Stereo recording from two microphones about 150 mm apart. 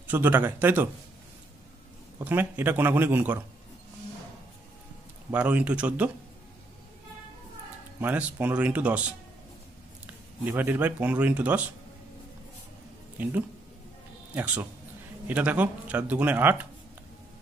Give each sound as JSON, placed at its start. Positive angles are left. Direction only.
{"t": 0.0, "sound": "speech", "side_deg": -10}
{"t": 2.2, "sound": "speech", "side_deg": -10}
{"t": 5.3, "sound": "speech", "side_deg": -10}
{"t": 8.0, "sound": "speech", "side_deg": -10}
{"t": 10.4, "sound": "speech", "side_deg": -10}
{"t": 13.2, "sound": "speech", "side_deg": -10}